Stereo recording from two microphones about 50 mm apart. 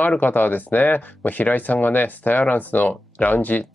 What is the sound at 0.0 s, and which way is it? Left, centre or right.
Speech, left.